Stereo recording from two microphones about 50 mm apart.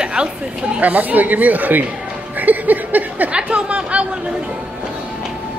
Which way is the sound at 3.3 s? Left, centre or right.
Right.